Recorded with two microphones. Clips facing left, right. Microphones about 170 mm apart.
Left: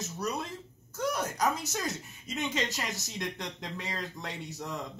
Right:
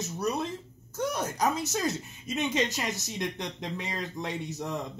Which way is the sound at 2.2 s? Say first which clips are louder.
Right 4 dB; 20° right (ahead or behind).